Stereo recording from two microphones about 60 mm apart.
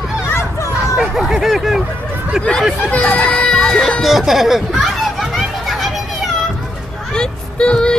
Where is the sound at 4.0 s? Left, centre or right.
Centre.